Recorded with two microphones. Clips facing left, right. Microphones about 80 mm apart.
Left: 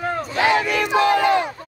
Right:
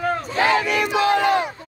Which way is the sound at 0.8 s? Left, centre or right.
Right.